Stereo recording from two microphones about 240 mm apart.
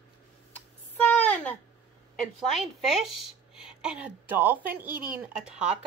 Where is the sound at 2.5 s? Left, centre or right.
Centre.